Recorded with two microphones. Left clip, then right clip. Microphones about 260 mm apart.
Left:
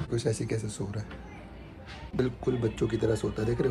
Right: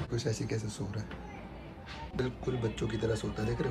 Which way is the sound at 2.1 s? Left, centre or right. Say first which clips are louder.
Left 6 dB; centre.